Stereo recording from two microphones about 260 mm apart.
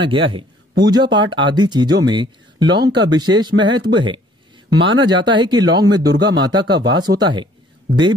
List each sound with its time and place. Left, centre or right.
0.0 s a man's voice: centre
2.8 s speech: right
3.2 s speech: centre
5.0 s speech: centre